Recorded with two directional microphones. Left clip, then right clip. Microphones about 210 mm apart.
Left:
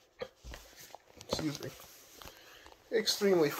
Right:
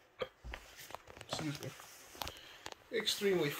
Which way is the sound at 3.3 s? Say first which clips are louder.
Left 5 dB; 50° left (ahead or behind).